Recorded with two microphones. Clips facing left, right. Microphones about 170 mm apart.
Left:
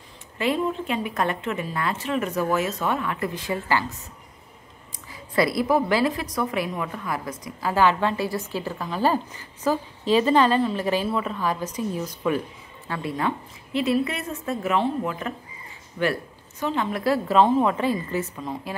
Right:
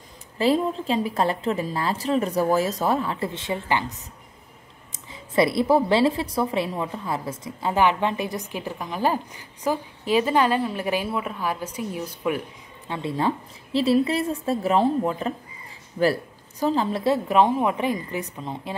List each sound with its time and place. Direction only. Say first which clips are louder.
0.4 s a woman's voice: right 3 dB; 35° right (ahead or behind)
4.9 s a woman's voice: right 2 dB; 25° right (ahead or behind)
12.8 s a woman's voice: right 2 dB; 25° right (ahead or behind)